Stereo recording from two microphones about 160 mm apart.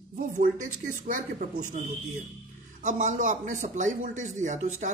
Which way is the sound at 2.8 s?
55° right (ahead or behind).